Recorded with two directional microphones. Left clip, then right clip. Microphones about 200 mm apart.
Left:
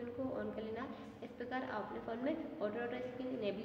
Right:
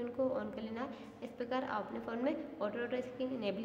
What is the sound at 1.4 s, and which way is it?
A woman's voice, 35° right (ahead or behind).